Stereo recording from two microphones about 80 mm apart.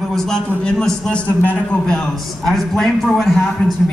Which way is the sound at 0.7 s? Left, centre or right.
Centre.